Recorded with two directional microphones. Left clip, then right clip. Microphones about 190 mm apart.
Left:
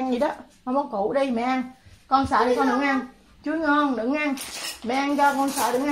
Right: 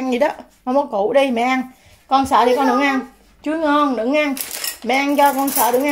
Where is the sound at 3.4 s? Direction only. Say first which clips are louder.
Right 5 dB; 35° right (ahead or behind).